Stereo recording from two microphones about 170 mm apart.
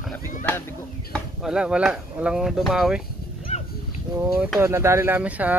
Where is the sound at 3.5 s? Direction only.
40° left (ahead or behind).